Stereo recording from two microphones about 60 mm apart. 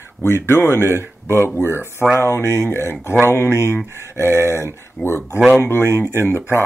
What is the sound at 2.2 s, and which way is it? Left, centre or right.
Speech, right.